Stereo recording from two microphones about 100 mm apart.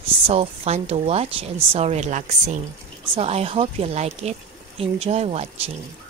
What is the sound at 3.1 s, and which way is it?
Speech, 85° right.